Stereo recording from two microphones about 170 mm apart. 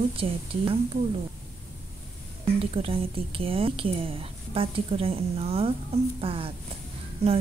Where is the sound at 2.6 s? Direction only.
35° right (ahead or behind).